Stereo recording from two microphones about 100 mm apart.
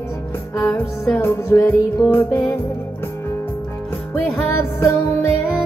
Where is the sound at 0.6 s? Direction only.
30° left (ahead or behind).